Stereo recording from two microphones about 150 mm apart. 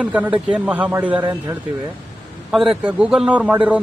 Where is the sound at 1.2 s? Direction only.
30° right (ahead or behind).